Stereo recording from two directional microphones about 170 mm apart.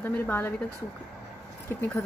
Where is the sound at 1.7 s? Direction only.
15° left (ahead or behind).